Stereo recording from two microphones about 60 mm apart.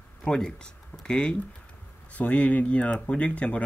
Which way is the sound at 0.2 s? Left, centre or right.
Centre.